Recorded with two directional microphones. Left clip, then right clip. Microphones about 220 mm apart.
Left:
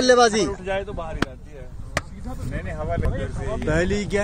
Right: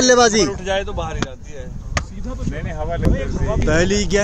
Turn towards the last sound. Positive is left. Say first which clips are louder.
# right 5 dB
turn(degrees=-5)  # may be behind; listen again after turning